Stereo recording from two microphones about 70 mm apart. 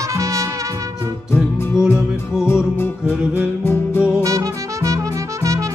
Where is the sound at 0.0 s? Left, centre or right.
Right.